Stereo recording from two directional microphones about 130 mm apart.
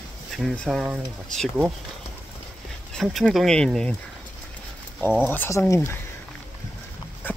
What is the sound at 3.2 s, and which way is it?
Speech, 5° left (ahead or behind).